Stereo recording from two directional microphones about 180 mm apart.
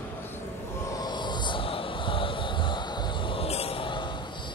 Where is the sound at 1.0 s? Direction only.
25° left (ahead or behind).